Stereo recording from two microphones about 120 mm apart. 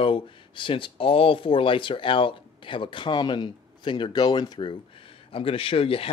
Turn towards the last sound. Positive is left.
turn(degrees=50)  # may be behind; listen again after turning